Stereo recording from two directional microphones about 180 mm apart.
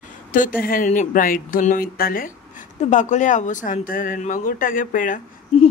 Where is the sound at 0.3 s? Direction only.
50° left (ahead or behind).